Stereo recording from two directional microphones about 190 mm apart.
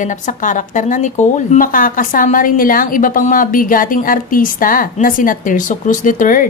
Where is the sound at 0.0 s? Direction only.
40° left (ahead or behind).